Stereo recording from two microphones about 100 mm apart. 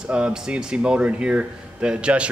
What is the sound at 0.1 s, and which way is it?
Speech, 10° right (ahead or behind).